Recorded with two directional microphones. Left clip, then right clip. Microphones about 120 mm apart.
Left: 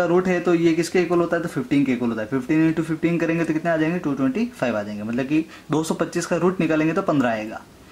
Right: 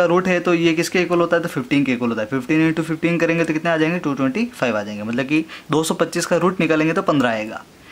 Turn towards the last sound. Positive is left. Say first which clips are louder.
# right 3 dB
turn(degrees=-25)  # may be behind; listen again after turning